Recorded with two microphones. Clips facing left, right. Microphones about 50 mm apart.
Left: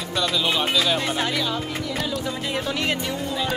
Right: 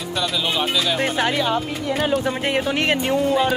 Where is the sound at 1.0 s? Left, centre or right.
Right.